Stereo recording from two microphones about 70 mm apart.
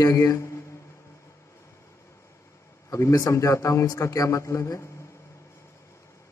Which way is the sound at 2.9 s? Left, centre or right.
Left.